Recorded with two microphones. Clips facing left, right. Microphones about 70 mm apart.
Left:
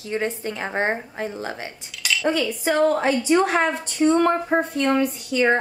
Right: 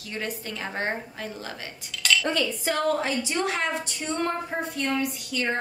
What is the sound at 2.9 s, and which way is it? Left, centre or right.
Speech, left.